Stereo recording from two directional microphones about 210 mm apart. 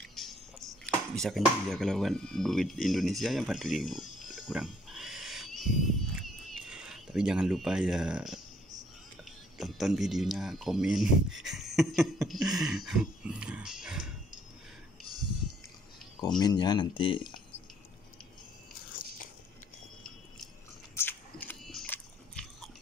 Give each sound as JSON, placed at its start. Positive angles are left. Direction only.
{"t": 0.0, "sound": "a sound", "side_deg": 0}
{"t": 0.8, "sound": "speech", "side_deg": 0}
{"t": 4.2, "sound": "wild animals", "side_deg": 0}
{"t": 6.2, "sound": "a sound", "side_deg": -5}
{"t": 9.6, "sound": "speech", "side_deg": 0}
{"t": 16.3, "sound": "speech", "side_deg": 20}
{"t": 20.9, "sound": "biting", "side_deg": 10}